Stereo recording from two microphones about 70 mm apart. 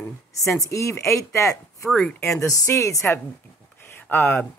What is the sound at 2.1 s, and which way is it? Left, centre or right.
Speech, left.